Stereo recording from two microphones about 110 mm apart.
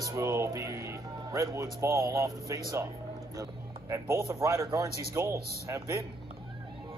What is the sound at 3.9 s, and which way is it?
A man's voice, 25° right (ahead or behind).